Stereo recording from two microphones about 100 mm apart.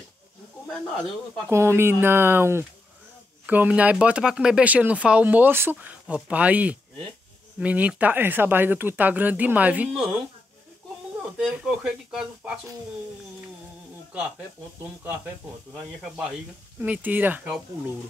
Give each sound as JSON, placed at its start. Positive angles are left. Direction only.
{"t": 1.5, "sound": "speech", "side_deg": -25}
{"t": 11.3, "sound": "speech", "side_deg": -10}
{"t": 14.8, "sound": "speech", "side_deg": -20}
{"t": 15.7, "sound": "speech", "side_deg": -5}
{"t": 16.8, "sound": "speech", "side_deg": -15}